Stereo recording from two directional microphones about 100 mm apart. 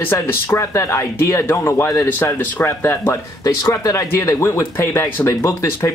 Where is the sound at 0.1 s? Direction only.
25° left (ahead or behind).